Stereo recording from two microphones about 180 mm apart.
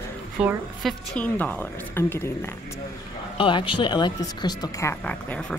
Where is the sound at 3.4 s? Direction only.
25° left (ahead or behind); by 5.5 s 5° left (ahead or behind).